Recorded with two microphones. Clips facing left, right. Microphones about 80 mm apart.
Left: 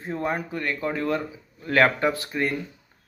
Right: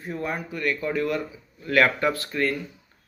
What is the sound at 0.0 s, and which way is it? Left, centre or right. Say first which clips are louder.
Speech: left 3 dB; left.